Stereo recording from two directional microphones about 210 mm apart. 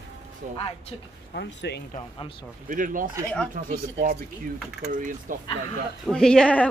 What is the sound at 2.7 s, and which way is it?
Speech, 40° right (ahead or behind).